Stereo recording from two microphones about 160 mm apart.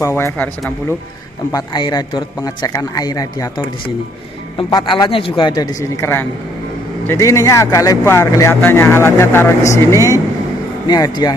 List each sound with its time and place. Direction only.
0.0 s speech: 15° left (ahead or behind)
1.5 s speech: 25° left (ahead or behind)